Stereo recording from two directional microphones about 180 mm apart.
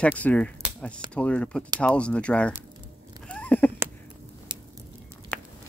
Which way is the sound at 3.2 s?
5° left (ahead or behind).